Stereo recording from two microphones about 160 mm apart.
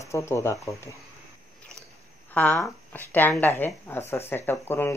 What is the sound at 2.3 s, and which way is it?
Speech, 10° left (ahead or behind).